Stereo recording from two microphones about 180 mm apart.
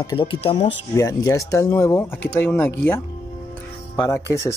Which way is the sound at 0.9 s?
15° left (ahead or behind).